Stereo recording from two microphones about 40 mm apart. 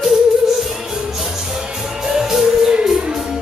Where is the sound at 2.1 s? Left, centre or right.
Centre.